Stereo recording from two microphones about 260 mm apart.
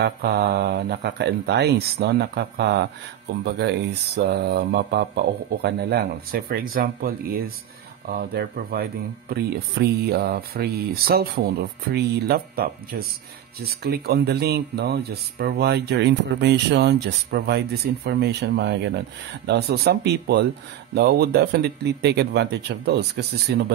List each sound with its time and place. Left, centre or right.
0.0 s speech: right
9.8 s speech: right